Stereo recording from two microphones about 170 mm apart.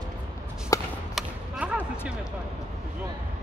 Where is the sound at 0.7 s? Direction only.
20° left (ahead or behind).